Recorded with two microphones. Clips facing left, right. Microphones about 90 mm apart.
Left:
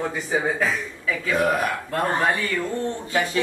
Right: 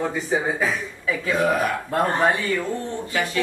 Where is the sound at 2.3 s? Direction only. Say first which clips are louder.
Right 2 dB; 15° right (ahead or behind).